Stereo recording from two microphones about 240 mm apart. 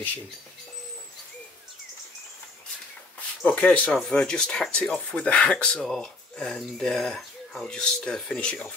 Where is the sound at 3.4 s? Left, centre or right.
Centre.